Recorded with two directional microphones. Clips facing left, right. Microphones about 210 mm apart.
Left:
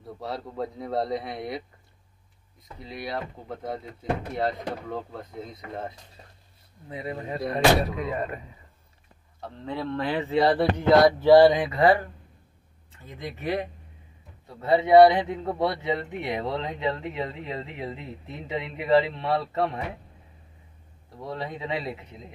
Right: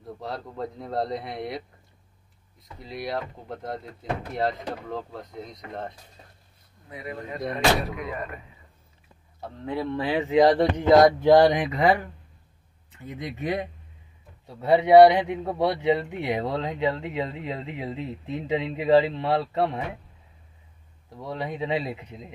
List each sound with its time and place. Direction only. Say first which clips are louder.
0.2 s speech: left 2 dB; centre (ahead or behind)
2.8 s speech: right 2 dB; centre (ahead or behind)
6.9 s speech: left 3 dB; 30° left (ahead or behind)
9.4 s speech: right 2 dB; 10° right (ahead or behind)
10.8 s speech: right 2 dB; centre (ahead or behind)
11.1 s speech: left 1 dB; 15° right (ahead or behind)
12.9 s speech: right 3 dB; 20° right (ahead or behind)
21.4 s speech: right 4 dB; 15° right (ahead or behind)